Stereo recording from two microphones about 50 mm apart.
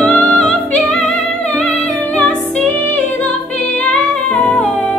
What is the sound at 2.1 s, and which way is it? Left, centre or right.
Music, left.